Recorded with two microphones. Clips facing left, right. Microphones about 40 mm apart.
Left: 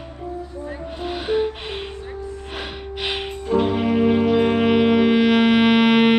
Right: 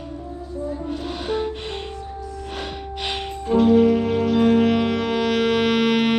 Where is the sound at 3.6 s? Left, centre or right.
Centre.